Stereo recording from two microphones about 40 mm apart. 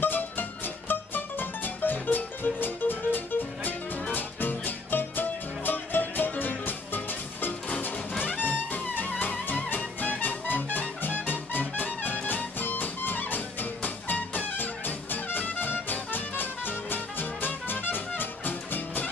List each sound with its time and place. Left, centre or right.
0.0 s music: left
8.2 s music: left